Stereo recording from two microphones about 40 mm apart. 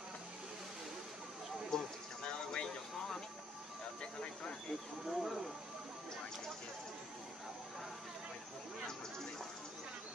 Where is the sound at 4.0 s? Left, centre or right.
Left.